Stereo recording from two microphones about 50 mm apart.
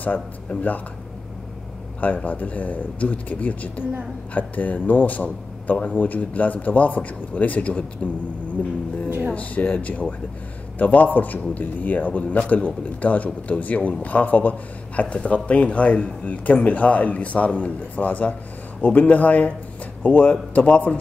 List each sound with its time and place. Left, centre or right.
0.0 s speech: left
2.0 s speech: left